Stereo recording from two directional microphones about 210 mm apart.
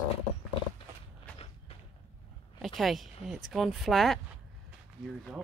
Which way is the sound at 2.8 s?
Centre (ahead or behind).